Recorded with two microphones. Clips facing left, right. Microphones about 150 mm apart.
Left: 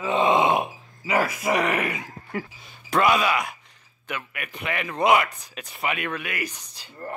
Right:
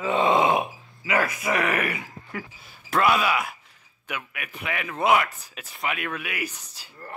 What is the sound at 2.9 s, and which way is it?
Speech, centre (ahead or behind).